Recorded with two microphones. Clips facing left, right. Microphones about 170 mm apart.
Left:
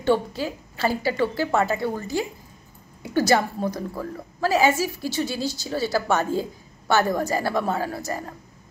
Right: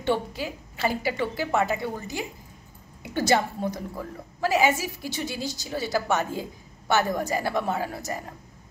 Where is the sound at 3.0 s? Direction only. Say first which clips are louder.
Left 3 dB; 20° right (ahead or behind).